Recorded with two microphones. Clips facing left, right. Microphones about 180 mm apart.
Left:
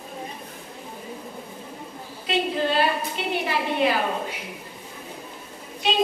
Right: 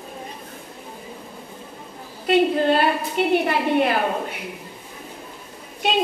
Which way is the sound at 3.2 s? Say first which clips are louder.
Right 8 dB; 55° right (ahead or behind).